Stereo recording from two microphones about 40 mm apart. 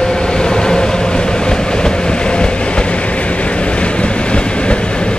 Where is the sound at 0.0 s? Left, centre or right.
Centre.